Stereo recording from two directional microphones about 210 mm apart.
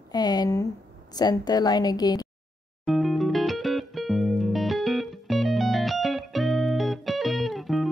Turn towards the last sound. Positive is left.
turn(degrees=0)  # may be behind; listen again after turning